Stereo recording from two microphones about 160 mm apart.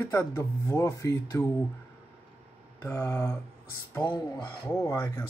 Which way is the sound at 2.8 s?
20° left (ahead or behind).